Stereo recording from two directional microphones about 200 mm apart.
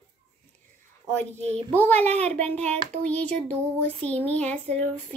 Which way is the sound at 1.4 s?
30° right (ahead or behind).